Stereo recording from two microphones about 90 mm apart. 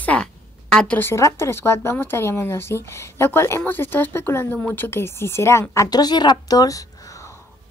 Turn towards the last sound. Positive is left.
turn(degrees=45)  # may be behind; listen again after turning